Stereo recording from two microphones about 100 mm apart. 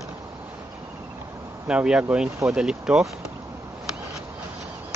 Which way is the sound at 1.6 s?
10° right (ahead or behind).